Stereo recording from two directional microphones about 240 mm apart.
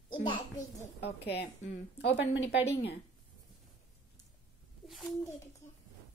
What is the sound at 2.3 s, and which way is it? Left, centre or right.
Speech, left.